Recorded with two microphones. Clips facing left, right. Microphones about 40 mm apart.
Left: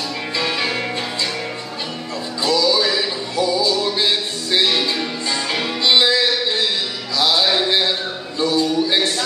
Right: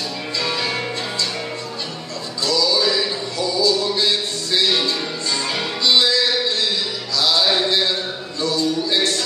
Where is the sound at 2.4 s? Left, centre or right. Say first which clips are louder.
Left 2 dB; left.